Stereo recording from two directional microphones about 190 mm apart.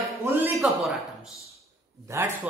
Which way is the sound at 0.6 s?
Centre (ahead or behind).